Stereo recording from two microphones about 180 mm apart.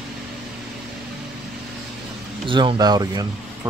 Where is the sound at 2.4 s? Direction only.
25° right (ahead or behind).